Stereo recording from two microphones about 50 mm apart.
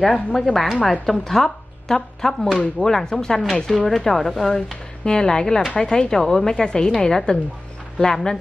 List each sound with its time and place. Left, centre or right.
0.0 s speech: centre